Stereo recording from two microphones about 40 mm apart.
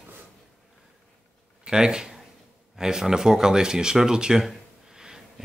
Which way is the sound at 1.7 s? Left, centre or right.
Centre.